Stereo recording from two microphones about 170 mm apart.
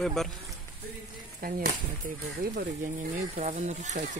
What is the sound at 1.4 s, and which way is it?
Speech, 60° right (ahead or behind).